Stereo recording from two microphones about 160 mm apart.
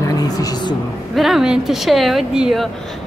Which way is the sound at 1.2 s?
Centre (ahead or behind).